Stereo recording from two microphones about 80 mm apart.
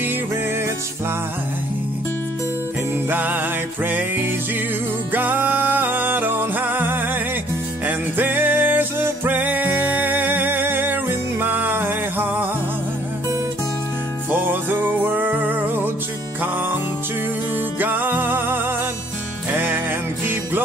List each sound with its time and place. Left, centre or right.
3.1 s music: right
14.3 s music: right
17.7 s music: right